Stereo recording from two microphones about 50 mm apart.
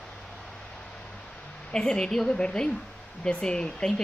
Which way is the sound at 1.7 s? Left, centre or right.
Centre.